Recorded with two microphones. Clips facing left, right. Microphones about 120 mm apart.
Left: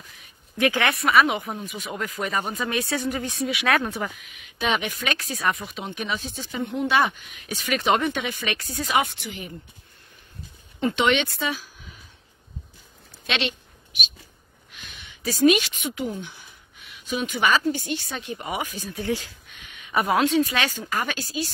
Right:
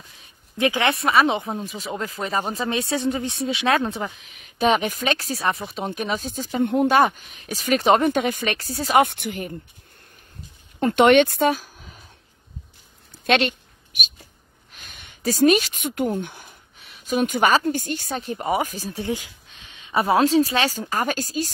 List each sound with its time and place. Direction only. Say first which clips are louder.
0.2 s speech: right 1 dB; 20° right (ahead or behind)
4.3 s speech: right 7 dB; 40° right (ahead or behind)
9.0 s speech: right 8 dB; 55° right (ahead or behind)
10.8 s speech: right 7 dB; 50° right (ahead or behind)
13.3 s a sound: right 8 dB; 45° right (ahead or behind)
14.7 s speech: left 1 dB; 45° right (ahead or behind)
19.0 s speech: left 1 dB; 15° right (ahead or behind)
19.5 s a woman's voice: right 2 dB; 25° right (ahead or behind); by 21.5 s 40° right (ahead or behind)